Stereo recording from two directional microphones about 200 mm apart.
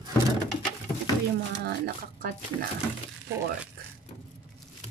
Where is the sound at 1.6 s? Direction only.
45° right (ahead or behind).